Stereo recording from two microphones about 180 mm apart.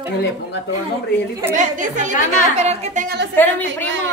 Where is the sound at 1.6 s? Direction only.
45° right (ahead or behind).